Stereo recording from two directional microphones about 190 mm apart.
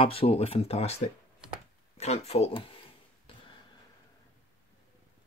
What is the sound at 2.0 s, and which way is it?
Speech, 35° left (ahead or behind).